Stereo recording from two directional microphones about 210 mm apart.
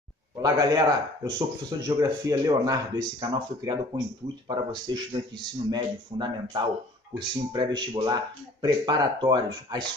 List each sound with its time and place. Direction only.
0.4 s speech: 15° right (ahead or behind)